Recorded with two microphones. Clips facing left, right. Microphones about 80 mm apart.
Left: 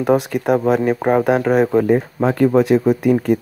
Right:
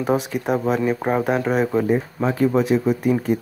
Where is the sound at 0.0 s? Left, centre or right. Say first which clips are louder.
Left 5 dB; left.